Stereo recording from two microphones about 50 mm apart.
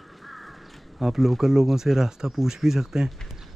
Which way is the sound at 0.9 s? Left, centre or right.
Centre.